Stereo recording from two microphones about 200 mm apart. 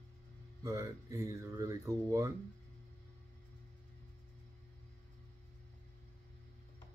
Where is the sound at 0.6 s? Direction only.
15° right (ahead or behind).